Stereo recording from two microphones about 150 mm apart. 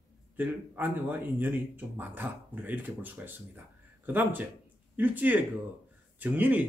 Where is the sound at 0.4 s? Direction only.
10° right (ahead or behind).